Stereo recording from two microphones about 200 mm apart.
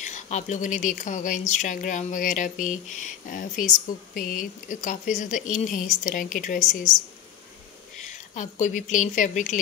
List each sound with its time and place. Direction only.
0.0 s speech: 35° left (ahead or behind)
8.0 s speech: 40° left (ahead or behind)